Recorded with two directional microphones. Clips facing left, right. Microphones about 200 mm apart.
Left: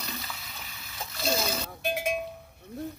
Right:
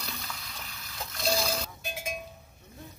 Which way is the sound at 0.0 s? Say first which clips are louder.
Left 2 dB; 5° left (ahead or behind).